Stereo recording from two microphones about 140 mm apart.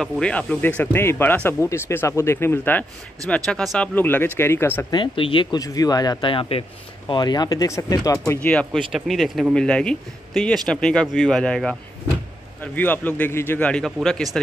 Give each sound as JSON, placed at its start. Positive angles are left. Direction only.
{"t": 0.0, "sound": "speech", "side_deg": 10}
{"t": 3.3, "sound": "speech", "side_deg": 5}
{"t": 4.9, "sound": "speech", "side_deg": 40}
{"t": 8.3, "sound": "speech", "side_deg": 10}
{"t": 12.7, "sound": "speech", "side_deg": 10}